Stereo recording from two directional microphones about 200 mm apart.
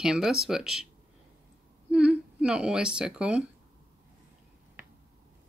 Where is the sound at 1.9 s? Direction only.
5° right (ahead or behind).